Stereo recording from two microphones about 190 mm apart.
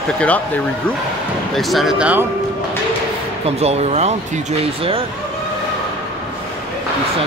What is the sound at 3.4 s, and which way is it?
Speech, 35° right (ahead or behind).